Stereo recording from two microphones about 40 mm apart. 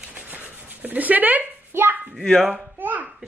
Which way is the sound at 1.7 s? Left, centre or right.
Right.